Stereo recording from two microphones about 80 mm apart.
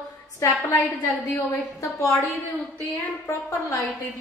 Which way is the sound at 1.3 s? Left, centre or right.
Left.